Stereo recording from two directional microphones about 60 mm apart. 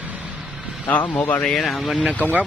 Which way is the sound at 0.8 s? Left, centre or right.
Left.